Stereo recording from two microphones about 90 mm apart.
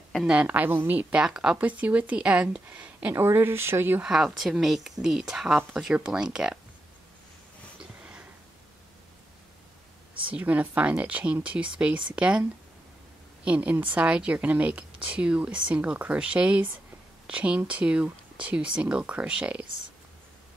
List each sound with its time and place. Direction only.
0.2 s a woman's voice: 15° right (ahead or behind)
1.2 s a woman's voice: 5° right (ahead or behind); by 4.0 s 25° right (ahead or behind)
4.0 s a woman's voice: 5° right (ahead or behind)
7.8 s a sound: 10° right (ahead or behind)
10.3 s a woman's voice: 15° right (ahead or behind)